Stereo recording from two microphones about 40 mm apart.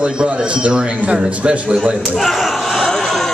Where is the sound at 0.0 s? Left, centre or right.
Right.